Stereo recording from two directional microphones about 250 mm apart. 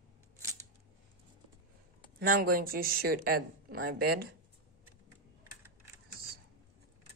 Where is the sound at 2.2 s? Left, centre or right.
Right.